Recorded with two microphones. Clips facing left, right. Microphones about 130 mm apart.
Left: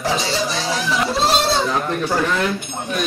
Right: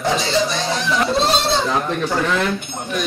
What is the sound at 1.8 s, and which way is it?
Speech, centre (ahead or behind).